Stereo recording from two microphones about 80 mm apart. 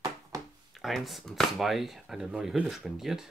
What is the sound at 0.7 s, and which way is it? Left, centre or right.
Speech, centre.